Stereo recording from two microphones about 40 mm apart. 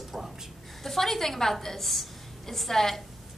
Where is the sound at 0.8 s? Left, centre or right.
Centre.